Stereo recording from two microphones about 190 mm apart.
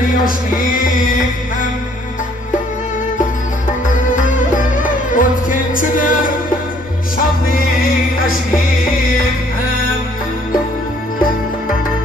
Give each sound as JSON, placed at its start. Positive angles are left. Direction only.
{"t": 0.2, "sound": "mantra", "side_deg": 45}
{"t": 4.1, "sound": "music", "side_deg": 45}
{"t": 7.5, "sound": "music", "side_deg": 50}